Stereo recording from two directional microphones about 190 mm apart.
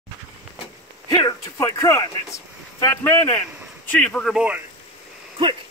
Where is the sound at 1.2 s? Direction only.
20° left (ahead or behind); by 4.6 s 5° right (ahead or behind).